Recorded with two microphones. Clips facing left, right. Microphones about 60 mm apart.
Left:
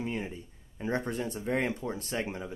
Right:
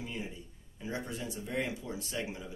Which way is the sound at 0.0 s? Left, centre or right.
Left.